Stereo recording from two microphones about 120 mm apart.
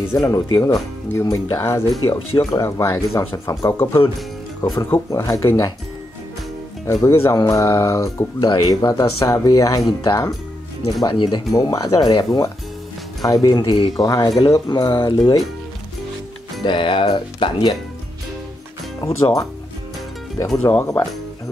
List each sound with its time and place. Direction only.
0.1 s speech: 30° left (ahead or behind)
6.9 s speech: 30° left (ahead or behind)
16.6 s speech: 45° left (ahead or behind)
20.4 s speech: 10° left (ahead or behind)
20.8 s speech: 25° left (ahead or behind)